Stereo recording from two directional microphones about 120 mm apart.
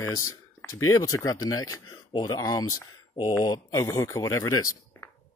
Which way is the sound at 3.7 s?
25° left (ahead or behind).